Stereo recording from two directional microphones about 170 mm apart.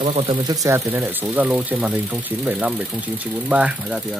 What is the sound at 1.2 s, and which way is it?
Speech, 5° right (ahead or behind).